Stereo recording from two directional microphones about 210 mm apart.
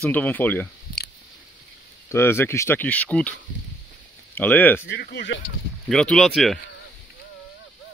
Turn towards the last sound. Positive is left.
turn(degrees=0)  # may be behind; listen again after turning